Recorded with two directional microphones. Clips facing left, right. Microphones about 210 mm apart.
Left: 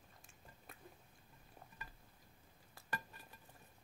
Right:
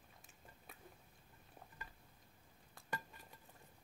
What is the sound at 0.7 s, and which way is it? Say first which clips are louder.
Biting: left 1 dB; centre (ahead or behind).